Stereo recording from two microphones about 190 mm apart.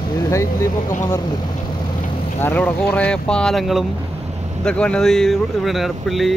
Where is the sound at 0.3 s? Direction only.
15° left (ahead or behind).